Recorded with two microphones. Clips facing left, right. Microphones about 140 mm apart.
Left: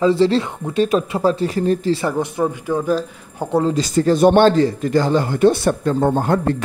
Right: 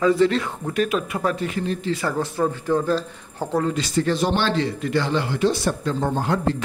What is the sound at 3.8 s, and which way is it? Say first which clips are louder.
Speech: left 8 dB; 45° left (ahead or behind).